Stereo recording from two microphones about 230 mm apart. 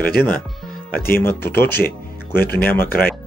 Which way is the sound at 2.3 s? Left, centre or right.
Left.